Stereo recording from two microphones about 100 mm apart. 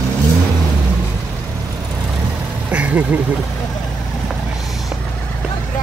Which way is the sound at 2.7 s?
15° right (ahead or behind).